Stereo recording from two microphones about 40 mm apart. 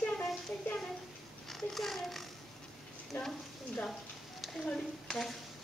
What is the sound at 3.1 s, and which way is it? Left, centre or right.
Speech, left.